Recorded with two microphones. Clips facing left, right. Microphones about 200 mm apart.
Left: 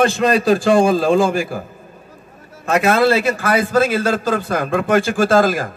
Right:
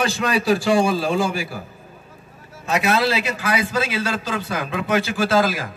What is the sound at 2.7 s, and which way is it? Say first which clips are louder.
A man's voice: left 6 dB; 50° left (ahead or behind).